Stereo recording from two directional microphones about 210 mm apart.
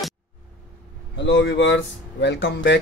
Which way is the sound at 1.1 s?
55° left (ahead or behind).